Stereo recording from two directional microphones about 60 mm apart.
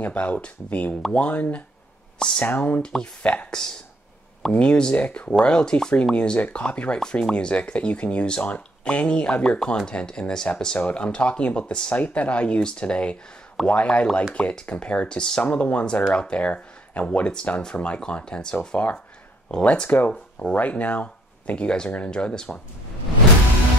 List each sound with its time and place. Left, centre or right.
0.0 s speech: left
2.1 s speech: centre
2.4 s speech: left
5.0 s speech: left
5.3 s speech: centre